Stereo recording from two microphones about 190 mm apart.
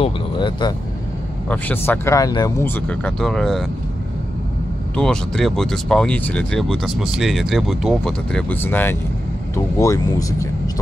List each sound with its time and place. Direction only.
0.0 s speech: 25° left (ahead or behind)
1.5 s speech: 10° left (ahead or behind)
4.9 s speech: 5° left (ahead or behind)